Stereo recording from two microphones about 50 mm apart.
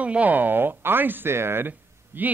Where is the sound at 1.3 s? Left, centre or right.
Right.